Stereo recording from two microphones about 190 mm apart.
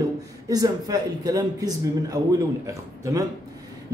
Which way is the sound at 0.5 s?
20° right (ahead or behind).